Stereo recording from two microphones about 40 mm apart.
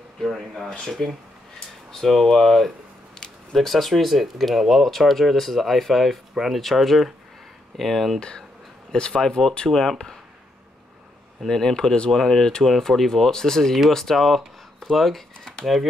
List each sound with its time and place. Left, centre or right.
0.2 s speech: centre
2.2 s speech: centre
3.2 s a sound: centre
3.5 s speech: centre
8.2 s speech: left
9.7 s speech: centre
11.4 s speech: centre